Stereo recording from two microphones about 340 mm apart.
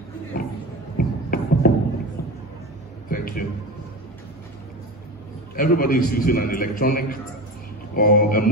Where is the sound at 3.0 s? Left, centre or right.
Left.